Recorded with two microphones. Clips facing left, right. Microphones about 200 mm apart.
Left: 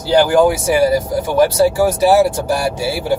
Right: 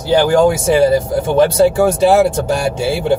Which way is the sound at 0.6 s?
25° right (ahead or behind).